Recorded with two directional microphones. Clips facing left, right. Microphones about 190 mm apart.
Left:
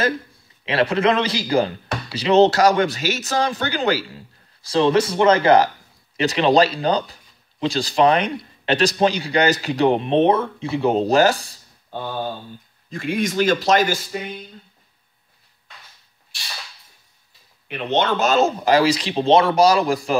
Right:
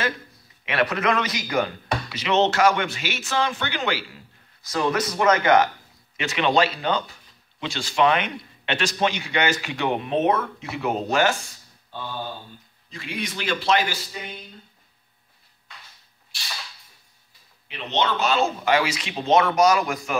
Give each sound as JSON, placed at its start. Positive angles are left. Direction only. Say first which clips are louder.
{"t": 0.7, "sound": "a man's voice", "louder": "left 5 dB", "side_deg": 30}
{"t": 11.9, "sound": "speech", "louder": "left 6 dB", "side_deg": 50}
{"t": 17.6, "sound": "speech", "louder": "left 5 dB", "side_deg": 55}